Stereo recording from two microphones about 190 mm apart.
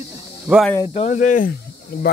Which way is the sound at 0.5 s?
Centre (ahead or behind).